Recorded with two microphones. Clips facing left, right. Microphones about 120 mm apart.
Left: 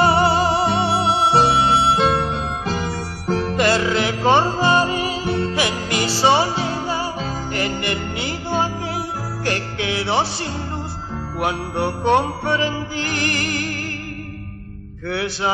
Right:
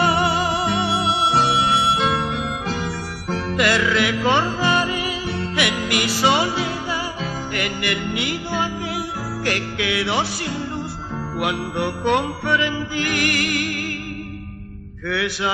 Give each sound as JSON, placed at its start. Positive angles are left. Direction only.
{"t": 0.0, "sound": "music", "side_deg": 35}
{"t": 3.3, "sound": "music", "side_deg": 30}
{"t": 15.0, "sound": "music", "side_deg": 35}